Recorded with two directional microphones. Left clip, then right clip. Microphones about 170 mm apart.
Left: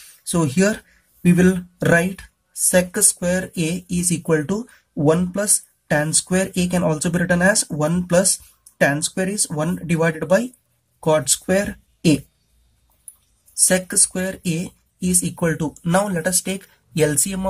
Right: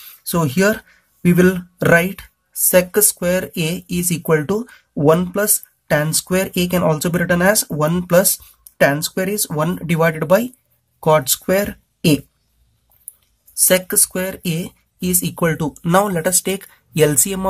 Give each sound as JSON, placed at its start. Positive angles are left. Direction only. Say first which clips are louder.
{"t": 0.2, "sound": "speech", "louder": "right 3 dB", "side_deg": -30}
{"t": 13.7, "sound": "speech", "louder": "right 4 dB", "side_deg": -30}